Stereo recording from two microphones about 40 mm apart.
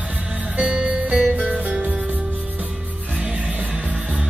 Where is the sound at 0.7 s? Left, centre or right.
Right.